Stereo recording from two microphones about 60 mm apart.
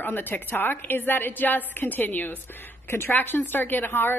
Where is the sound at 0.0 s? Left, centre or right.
Left.